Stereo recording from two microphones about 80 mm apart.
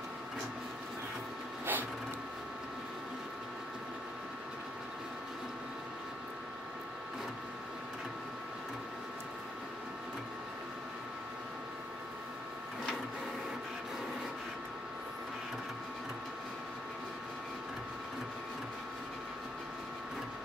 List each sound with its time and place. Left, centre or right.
1.7 s printer: right